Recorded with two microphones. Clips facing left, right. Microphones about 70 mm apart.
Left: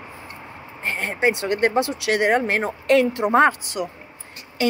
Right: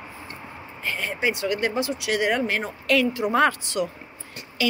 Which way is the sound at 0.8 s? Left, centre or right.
Left.